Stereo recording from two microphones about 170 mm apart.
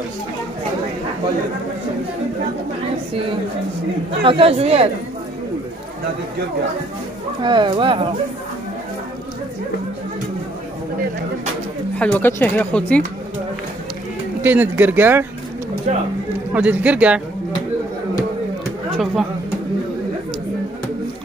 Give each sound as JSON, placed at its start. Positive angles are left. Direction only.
{"t": 4.2, "sound": "speech", "side_deg": -30}
{"t": 7.4, "sound": "speech", "side_deg": -30}
{"t": 12.0, "sound": "speech", "side_deg": 10}
{"t": 14.4, "sound": "speech", "side_deg": -10}
{"t": 15.9, "sound": "speech", "side_deg": -45}
{"t": 16.5, "sound": "speech", "side_deg": -10}
{"t": 18.9, "sound": "speech", "side_deg": 0}